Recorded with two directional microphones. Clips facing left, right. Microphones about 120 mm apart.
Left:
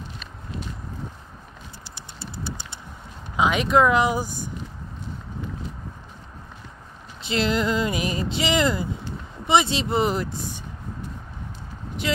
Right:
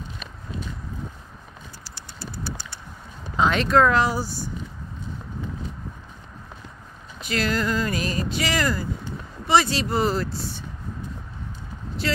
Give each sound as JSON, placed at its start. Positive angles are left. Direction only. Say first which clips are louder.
{"t": 1.9, "sound": "vehicle", "louder": "right 2 dB", "side_deg": 20}
{"t": 3.3, "sound": "speech", "louder": "even", "side_deg": 10}
{"t": 7.2, "sound": "speech", "louder": "left 2 dB", "side_deg": 25}
{"t": 12.0, "sound": "speech", "louder": "left 1 dB", "side_deg": 15}